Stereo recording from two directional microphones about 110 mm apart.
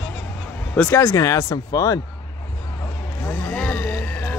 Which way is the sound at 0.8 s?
20° left (ahead or behind).